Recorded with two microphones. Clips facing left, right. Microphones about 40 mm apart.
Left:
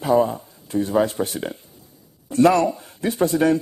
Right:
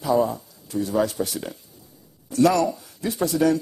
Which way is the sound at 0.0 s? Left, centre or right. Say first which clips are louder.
Left 3 dB; left.